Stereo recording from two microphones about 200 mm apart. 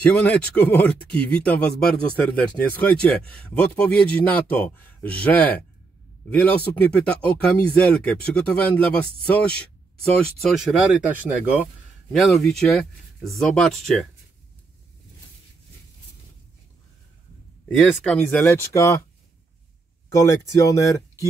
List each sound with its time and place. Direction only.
0.0 s a man's voice: 10° left (ahead or behind)
17.6 s speech: 5° left (ahead or behind)
20.1 s speech: 15° left (ahead or behind)